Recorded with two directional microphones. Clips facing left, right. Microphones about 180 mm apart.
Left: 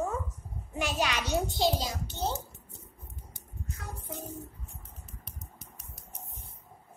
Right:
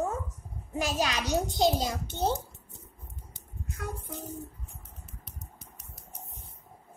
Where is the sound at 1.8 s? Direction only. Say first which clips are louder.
Right 4 dB; 55° right (ahead or behind).